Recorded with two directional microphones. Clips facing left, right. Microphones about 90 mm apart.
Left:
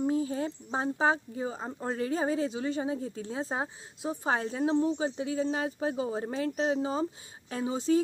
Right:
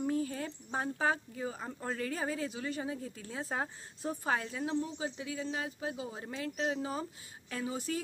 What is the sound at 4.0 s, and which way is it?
Speech, 15° left (ahead or behind).